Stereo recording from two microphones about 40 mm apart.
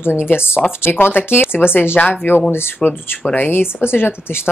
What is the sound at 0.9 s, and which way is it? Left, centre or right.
Speech, left.